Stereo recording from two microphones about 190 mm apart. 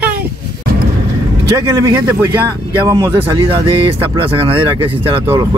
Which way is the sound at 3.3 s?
30° right (ahead or behind).